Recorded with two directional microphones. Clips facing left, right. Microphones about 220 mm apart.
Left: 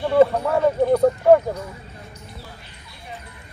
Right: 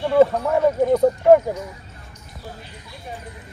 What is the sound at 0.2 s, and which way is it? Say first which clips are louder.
Speech: even; 5° right (ahead or behind).